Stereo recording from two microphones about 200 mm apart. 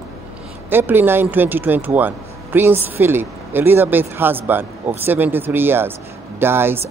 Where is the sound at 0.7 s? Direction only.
10° right (ahead or behind).